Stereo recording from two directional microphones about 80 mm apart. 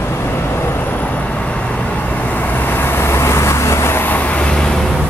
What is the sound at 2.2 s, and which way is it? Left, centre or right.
Vehicle, left.